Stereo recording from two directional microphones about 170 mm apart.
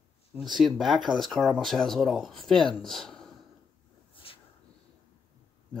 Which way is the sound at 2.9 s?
Centre (ahead or behind).